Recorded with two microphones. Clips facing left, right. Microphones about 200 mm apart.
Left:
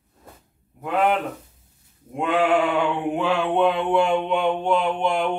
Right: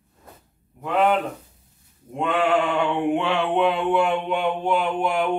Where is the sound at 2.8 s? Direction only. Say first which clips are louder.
Right 1 dB; centre (ahead or behind).